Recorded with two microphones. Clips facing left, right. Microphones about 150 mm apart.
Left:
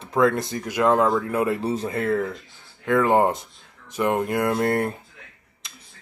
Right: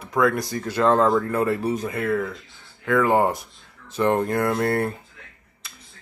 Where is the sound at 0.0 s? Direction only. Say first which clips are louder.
Left 1 dB; 25° left (ahead or behind).